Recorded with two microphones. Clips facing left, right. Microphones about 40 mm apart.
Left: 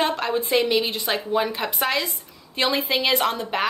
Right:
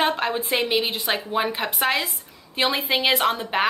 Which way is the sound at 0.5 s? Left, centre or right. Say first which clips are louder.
Left 4 dB; centre.